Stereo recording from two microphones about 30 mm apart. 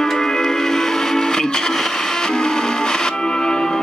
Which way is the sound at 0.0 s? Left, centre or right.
Centre.